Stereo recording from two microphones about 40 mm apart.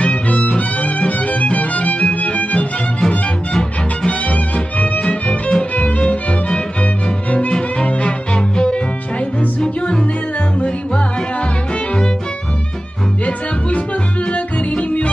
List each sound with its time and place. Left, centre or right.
0.0 s music: left
4.1 s music: left
13.2 s music: left